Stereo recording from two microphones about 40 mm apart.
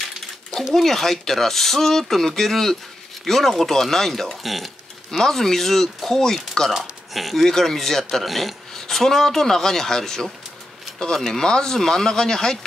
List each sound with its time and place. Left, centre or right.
0.7 s speech: centre
5.2 s speech: centre
6.8 s speech: centre
11.4 s speech: centre